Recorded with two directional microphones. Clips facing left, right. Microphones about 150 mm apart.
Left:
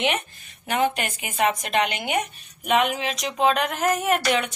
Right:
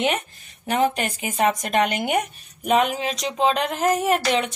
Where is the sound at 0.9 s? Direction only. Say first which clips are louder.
Right 2 dB; 30° right (ahead or behind).